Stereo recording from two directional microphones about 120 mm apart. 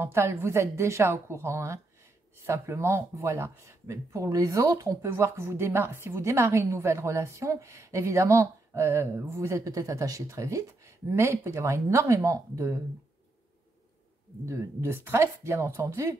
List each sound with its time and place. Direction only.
0.0 s a woman's voice: 20° right (ahead or behind)
14.4 s a woman's voice: 25° right (ahead or behind)